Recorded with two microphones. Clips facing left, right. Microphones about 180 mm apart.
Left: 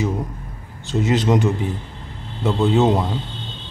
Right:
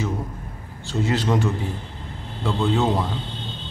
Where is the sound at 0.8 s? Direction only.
20° left (ahead or behind).